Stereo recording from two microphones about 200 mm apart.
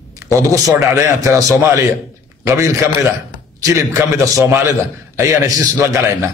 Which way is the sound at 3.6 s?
15° right (ahead or behind).